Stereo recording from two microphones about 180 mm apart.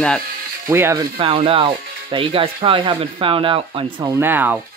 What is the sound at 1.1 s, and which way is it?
Speech, 30° right (ahead or behind).